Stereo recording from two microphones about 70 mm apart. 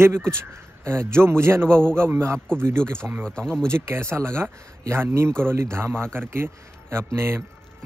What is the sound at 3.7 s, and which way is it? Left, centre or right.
Speech, right.